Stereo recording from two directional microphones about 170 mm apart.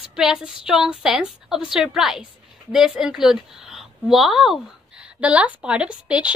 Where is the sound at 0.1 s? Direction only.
5° right (ahead or behind).